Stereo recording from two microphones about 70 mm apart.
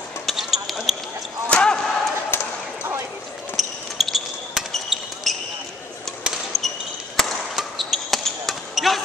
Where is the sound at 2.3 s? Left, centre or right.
Left.